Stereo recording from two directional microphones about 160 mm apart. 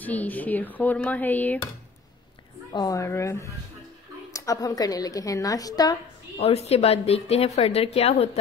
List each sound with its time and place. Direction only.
0.0 s speech: 10° left (ahead or behind)
2.7 s a woman's voice: 20° left (ahead or behind)
6.3 s a woman's voice: 40° left (ahead or behind)